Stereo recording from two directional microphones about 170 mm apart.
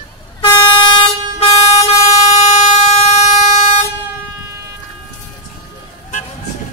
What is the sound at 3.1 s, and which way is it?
Vehicle, 45° left (ahead or behind).